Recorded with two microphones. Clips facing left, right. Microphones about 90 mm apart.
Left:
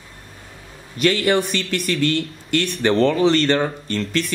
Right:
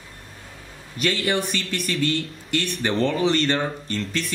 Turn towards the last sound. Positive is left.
turn(degrees=0)  # may be behind; listen again after turning